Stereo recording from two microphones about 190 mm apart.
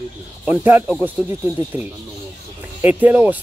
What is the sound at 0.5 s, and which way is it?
Speech, 10° right (ahead or behind).